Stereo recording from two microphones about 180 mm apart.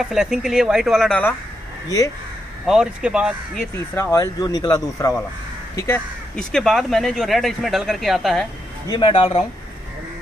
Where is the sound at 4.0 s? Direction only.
20° left (ahead or behind).